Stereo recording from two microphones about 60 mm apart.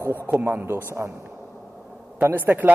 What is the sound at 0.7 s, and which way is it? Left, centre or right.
Speech, right.